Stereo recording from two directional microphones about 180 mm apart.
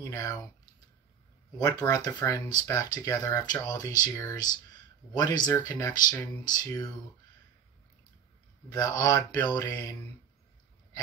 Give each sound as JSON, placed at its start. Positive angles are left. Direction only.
{"t": 0.0, "sound": "speech", "side_deg": 15}
{"t": 1.6, "sound": "speech", "side_deg": 20}
{"t": 8.7, "sound": "speech", "side_deg": 20}